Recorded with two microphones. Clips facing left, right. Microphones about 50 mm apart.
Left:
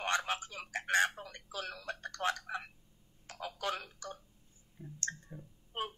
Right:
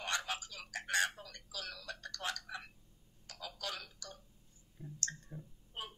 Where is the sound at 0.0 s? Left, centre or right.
Left.